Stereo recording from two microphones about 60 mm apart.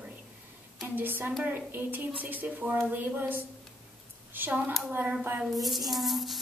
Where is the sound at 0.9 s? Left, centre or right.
Right.